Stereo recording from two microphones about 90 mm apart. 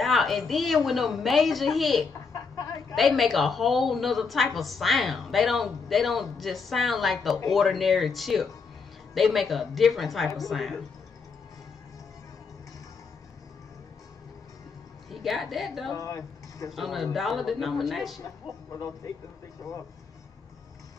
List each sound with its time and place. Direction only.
0.0 s a woman's voice: centre (ahead or behind)
2.3 s a sound: 45° left (ahead or behind)
3.0 s a woman's voice: centre (ahead or behind)
15.0 s a woman's voice: centre (ahead or behind)
15.9 s speech: 40° left (ahead or behind)
16.7 s a woman's voice: centre (ahead or behind)